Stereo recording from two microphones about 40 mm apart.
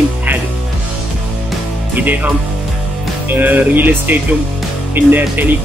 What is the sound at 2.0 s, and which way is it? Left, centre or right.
Speech, right.